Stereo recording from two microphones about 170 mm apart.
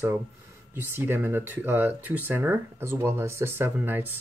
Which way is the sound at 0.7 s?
15° right (ahead or behind).